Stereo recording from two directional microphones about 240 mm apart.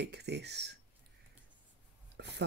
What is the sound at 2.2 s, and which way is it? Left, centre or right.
Speech, right.